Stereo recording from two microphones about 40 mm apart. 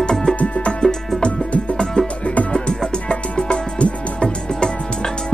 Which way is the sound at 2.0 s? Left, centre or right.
Left.